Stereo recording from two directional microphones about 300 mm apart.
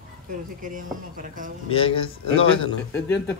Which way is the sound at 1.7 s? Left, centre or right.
Centre.